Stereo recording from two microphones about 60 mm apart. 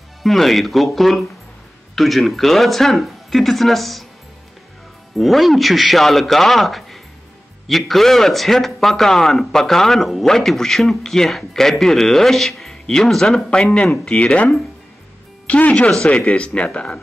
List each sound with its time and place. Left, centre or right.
0.2 s a man's voice: centre
5.1 s a man's voice: centre
13.5 s speech: centre